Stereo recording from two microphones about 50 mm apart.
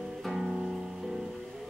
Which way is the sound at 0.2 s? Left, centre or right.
Centre.